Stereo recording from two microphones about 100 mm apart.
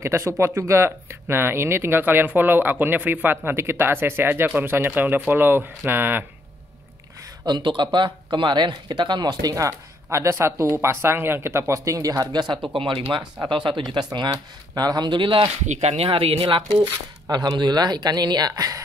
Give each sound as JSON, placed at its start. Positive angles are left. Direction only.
{"t": 0.0, "sound": "speech", "side_deg": -30}
{"t": 7.4, "sound": "speech", "side_deg": -50}
{"t": 12.7, "sound": "speech", "side_deg": -65}
{"t": 13.1, "sound": "a man's voice", "side_deg": -50}
{"t": 17.3, "sound": "a man's voice", "side_deg": -45}